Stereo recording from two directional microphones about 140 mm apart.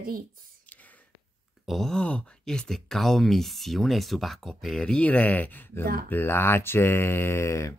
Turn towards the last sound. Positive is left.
turn(degrees=20)  # may be behind; listen again after turning